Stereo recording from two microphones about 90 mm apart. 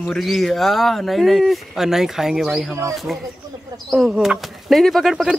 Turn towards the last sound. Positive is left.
turn(degrees=0)  # may be behind; listen again after turning